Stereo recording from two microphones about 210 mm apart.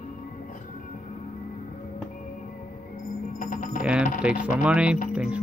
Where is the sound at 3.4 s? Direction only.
40° left (ahead or behind).